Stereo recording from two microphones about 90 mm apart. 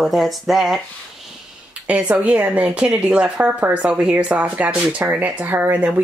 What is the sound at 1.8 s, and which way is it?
Speech, 15° right (ahead or behind).